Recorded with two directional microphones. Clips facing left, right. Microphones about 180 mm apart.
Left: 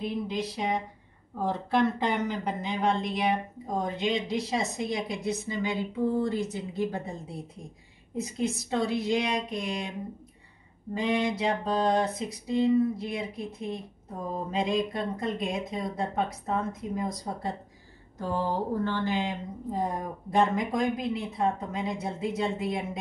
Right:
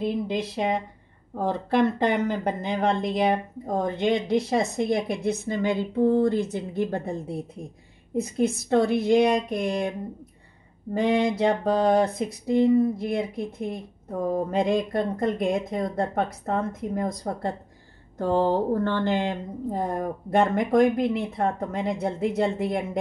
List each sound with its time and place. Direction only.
0.3 s speech: 60° right (ahead or behind)
8.2 s speech: 55° right (ahead or behind)
11.0 s speech: 55° right (ahead or behind)
18.7 s speech: 60° right (ahead or behind)